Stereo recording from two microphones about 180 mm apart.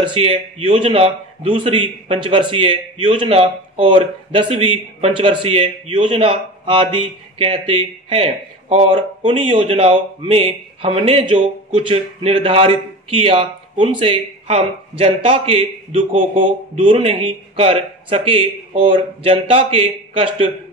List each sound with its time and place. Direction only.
0.0 s a man's voice: 30° right (ahead or behind)